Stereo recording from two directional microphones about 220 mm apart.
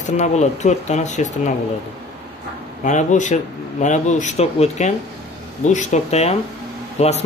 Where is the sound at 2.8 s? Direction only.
35° left (ahead or behind).